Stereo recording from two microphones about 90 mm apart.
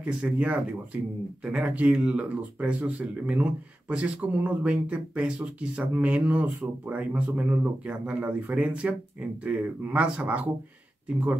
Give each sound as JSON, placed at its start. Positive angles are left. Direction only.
{"t": 0.0, "sound": "speech", "side_deg": -10}